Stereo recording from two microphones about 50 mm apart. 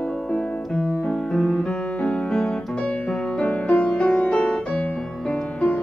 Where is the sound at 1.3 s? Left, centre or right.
Centre.